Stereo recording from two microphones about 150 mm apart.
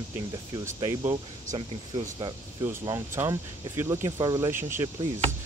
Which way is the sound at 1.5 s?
35° right (ahead or behind).